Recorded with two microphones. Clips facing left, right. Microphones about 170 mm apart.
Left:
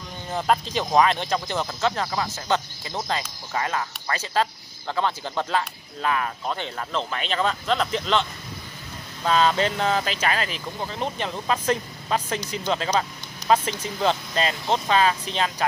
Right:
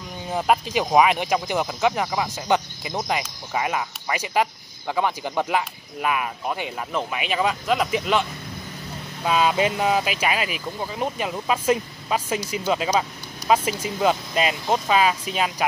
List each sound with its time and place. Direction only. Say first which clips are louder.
0.3 s speech: right 2 dB; 10° right (ahead or behind)